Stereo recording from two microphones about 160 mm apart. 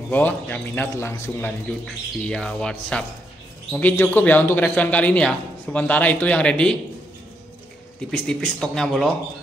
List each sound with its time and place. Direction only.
0.1 s a man's voice: 10° left (ahead or behind)
8.1 s speech: 5° left (ahead or behind)